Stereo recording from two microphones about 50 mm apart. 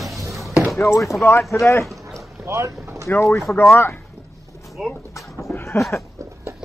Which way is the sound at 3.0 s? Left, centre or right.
Left.